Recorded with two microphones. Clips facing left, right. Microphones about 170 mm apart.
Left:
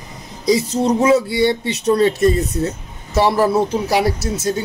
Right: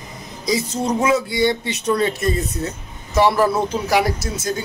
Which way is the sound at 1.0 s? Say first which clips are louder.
Left 3 dB; 30° left (ahead or behind).